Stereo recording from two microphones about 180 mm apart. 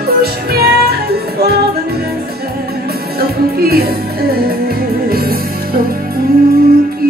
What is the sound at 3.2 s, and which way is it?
Music, 55° right (ahead or behind).